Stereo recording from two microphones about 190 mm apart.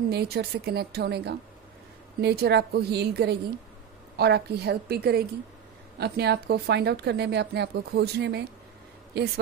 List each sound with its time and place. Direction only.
0.1 s speech: 55° right (ahead or behind)